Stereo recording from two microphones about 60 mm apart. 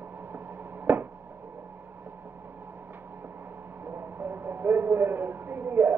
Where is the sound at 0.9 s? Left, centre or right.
Right.